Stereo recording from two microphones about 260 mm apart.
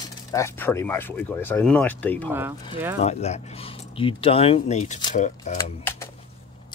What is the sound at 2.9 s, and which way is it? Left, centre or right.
Speech, left.